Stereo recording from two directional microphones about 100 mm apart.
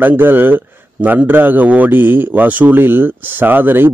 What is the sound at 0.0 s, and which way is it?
A man's voice, 20° right (ahead or behind).